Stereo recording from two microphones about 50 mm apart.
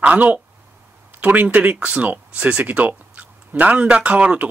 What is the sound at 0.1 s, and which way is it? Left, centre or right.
Speech, right.